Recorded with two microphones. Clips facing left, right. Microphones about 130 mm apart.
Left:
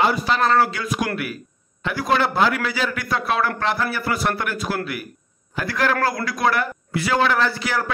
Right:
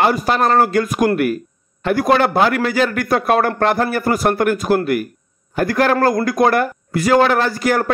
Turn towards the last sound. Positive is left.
turn(degrees=-50)  # may be behind; listen again after turning